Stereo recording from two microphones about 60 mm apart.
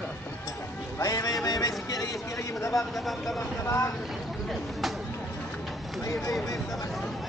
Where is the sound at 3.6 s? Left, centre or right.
Left.